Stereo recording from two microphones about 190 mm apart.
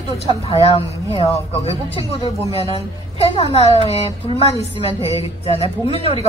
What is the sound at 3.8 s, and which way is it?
A woman's voice, 30° left (ahead or behind).